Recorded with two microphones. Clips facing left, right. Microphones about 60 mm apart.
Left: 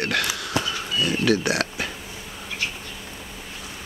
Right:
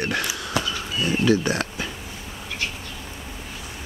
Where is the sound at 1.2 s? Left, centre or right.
Centre.